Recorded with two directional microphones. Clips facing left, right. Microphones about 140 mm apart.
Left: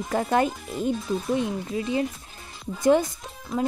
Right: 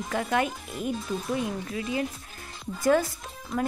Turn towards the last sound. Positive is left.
turn(degrees=0)  # may be behind; listen again after turning